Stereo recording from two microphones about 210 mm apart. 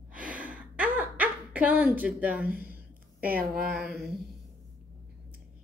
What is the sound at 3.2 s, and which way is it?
Speech, 45° right (ahead or behind).